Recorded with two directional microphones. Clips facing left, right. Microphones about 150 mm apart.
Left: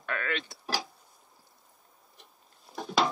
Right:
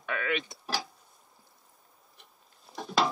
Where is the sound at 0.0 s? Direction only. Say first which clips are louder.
Right 2 dB; 5° right (ahead or behind).